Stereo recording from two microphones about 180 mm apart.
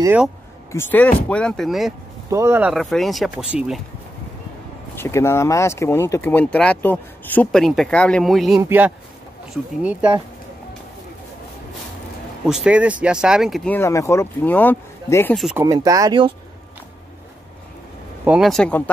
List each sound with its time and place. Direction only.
0.7 s speech: 15° left (ahead or behind)
2.2 s speech: 15° right (ahead or behind)
2.7 s speech: centre (ahead or behind)
4.9 s speech: 15° left (ahead or behind); by 10.1 s 10° right (ahead or behind)
12.4 s speech: 5° right (ahead or behind)
13.7 s speech: 15° left (ahead or behind)
15.5 s speech: 20° right (ahead or behind)
18.2 s speech: 5° right (ahead or behind)